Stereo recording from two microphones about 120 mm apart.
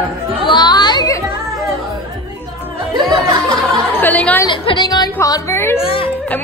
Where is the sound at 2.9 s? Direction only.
40° right (ahead or behind).